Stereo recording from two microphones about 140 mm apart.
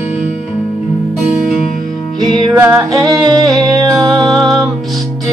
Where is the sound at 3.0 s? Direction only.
30° right (ahead or behind).